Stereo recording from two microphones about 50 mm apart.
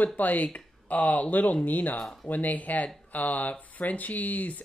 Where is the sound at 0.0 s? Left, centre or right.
Left.